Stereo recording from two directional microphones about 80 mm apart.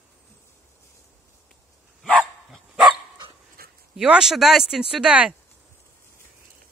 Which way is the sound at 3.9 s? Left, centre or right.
Centre.